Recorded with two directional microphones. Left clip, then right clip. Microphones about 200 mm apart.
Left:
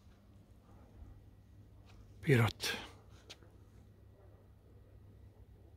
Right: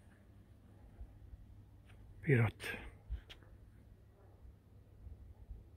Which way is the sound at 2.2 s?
15° left (ahead or behind).